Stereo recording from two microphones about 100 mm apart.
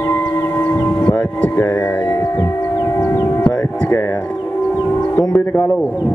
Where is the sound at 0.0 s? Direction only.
25° left (ahead or behind).